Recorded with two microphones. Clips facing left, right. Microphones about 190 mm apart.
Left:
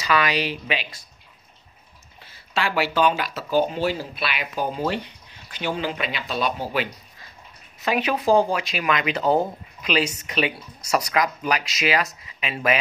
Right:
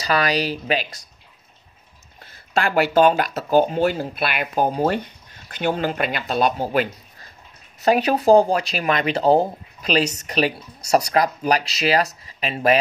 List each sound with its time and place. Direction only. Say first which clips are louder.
0.0 s speech: right 2 dB; 40° right (ahead or behind)
2.2 s speech: right 4 dB; 50° right (ahead or behind)